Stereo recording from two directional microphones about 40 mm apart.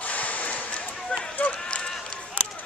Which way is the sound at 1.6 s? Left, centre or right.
Centre.